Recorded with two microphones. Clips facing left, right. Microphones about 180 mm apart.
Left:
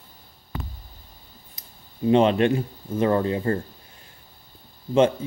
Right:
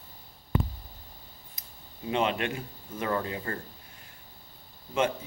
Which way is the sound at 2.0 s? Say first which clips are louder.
Left 11 dB; 35° left (ahead or behind).